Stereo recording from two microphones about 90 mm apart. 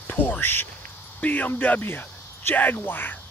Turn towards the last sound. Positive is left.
turn(degrees=20)  # may be behind; listen again after turning